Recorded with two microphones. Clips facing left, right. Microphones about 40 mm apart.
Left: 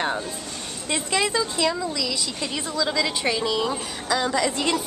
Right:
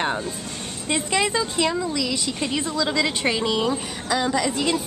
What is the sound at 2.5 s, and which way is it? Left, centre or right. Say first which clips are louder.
Speech: right 4 dB; right.